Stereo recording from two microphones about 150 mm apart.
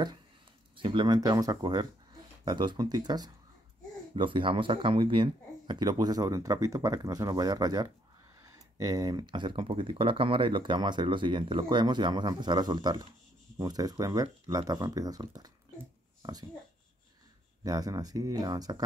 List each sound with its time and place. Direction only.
0.7 s speech: 35° right (ahead or behind)
16.2 s a sound: 25° right (ahead or behind)
17.6 s speech: 25° right (ahead or behind)